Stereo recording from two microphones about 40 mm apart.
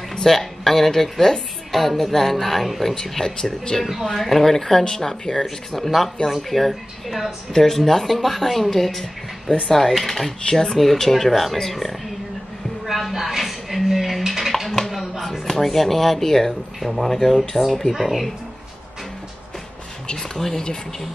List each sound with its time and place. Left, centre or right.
0.1 s a woman's voice: centre
2.9 s speech: centre
3.8 s speech: centre
12.8 s a sound: centre
17.9 s speech: centre
20.1 s speech: centre